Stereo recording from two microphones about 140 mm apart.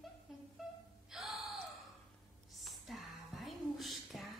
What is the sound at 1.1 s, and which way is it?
Gasp, centre (ahead or behind).